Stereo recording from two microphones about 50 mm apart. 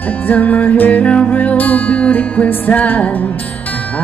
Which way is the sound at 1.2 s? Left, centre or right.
Left.